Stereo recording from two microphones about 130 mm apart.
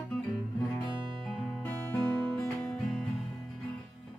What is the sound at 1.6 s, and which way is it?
Music, 10° left (ahead or behind).